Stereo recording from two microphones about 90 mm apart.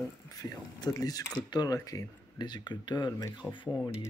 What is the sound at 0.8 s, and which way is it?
Speech, 45° left (ahead or behind).